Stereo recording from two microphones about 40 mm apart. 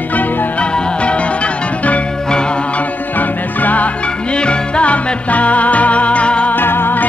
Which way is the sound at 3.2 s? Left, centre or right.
Left.